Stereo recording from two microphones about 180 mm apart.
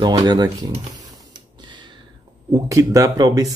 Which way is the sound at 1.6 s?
25° right (ahead or behind).